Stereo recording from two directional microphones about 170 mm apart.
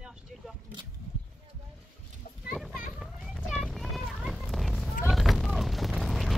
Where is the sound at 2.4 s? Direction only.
Centre (ahead or behind).